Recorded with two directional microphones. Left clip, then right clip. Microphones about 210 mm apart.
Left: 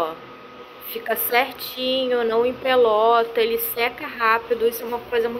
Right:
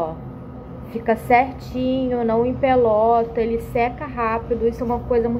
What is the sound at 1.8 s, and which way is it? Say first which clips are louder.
Speech: even; 20° right (ahead or behind).